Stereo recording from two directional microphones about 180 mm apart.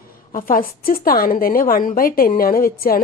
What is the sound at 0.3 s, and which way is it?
A woman's voice, 50° left (ahead or behind).